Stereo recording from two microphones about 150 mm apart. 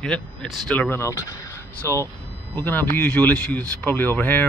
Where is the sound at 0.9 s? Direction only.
20° left (ahead or behind).